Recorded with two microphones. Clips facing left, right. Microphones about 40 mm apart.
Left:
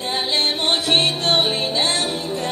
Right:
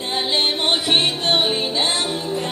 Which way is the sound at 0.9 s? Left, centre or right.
Centre.